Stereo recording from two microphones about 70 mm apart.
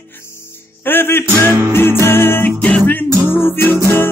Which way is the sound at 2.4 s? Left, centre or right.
Left.